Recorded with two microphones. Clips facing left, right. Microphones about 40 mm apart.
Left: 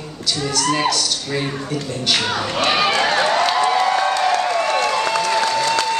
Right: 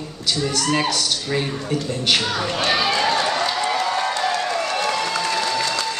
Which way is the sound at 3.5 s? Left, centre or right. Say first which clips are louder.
Left 5 dB; left.